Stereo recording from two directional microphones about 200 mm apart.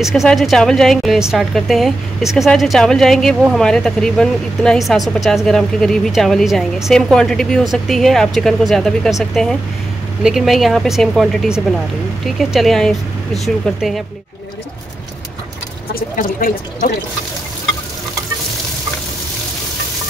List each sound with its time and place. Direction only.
0.0 s a woman's voice: centre (ahead or behind)
15.9 s speech: 45° left (ahead or behind)